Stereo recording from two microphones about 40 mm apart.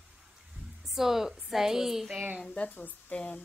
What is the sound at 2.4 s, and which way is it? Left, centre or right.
Speech, left.